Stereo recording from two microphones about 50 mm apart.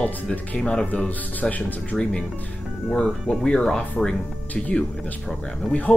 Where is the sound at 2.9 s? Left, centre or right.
Centre.